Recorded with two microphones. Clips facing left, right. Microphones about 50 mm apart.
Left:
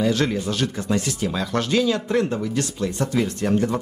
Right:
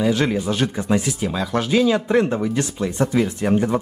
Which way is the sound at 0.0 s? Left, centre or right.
Centre.